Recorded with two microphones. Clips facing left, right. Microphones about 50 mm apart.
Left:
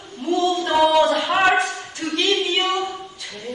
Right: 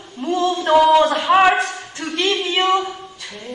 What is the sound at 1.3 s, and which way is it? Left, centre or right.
Speech, centre.